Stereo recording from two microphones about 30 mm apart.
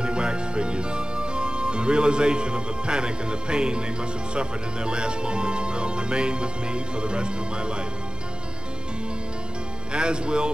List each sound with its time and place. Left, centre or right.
0.0 s speech: right
9.9 s speech: right